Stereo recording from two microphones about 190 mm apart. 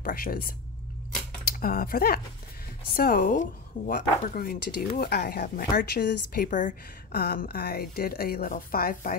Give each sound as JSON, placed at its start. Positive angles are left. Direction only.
{"t": 0.0, "sound": "a woman's voice", "side_deg": 50}